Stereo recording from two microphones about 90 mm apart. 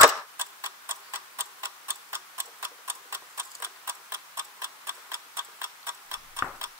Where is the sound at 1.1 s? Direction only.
25° right (ahead or behind).